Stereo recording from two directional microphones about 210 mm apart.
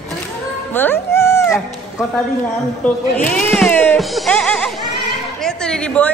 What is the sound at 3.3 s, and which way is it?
A woman's voice, 5° left (ahead or behind).